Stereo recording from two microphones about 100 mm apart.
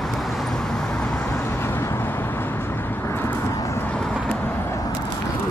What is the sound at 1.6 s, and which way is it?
Vehicle, 25° left (ahead or behind).